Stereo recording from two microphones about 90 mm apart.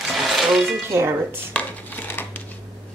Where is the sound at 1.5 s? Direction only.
20° left (ahead or behind).